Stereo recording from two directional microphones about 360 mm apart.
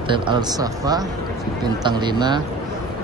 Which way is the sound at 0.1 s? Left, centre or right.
Centre.